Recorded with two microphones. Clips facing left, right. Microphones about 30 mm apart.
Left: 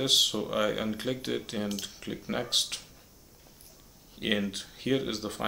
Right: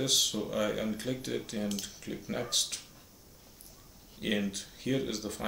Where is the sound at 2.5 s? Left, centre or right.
Left.